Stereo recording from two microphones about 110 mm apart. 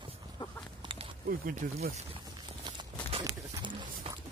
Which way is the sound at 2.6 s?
45° right (ahead or behind).